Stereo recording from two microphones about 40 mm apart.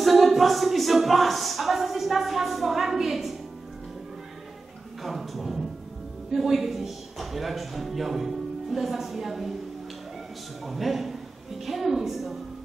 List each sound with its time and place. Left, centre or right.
0.0 s a sound: centre
5.0 s a man's voice: centre
10.7 s a man's voice: centre